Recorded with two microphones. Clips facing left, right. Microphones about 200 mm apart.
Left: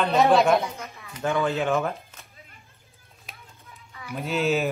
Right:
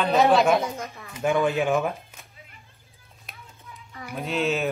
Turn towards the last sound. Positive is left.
turn(degrees=0)  # may be behind; listen again after turning